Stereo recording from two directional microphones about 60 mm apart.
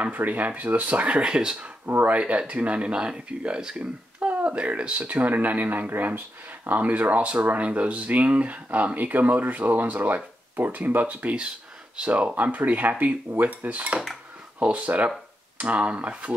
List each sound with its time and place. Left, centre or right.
0.0 s speech: right